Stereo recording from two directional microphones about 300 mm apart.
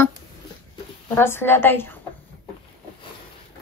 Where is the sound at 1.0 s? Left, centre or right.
Centre.